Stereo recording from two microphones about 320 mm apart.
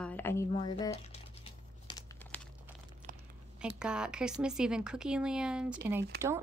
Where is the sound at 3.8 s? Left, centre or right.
Centre.